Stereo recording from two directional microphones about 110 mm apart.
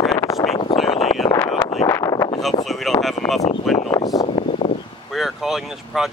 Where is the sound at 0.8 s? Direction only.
65° left (ahead or behind).